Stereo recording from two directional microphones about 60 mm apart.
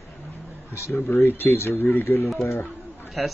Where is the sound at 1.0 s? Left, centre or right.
Left.